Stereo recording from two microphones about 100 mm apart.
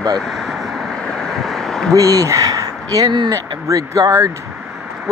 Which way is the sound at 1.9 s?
35° right (ahead or behind).